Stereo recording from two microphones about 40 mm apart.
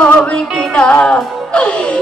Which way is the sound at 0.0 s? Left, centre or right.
Left.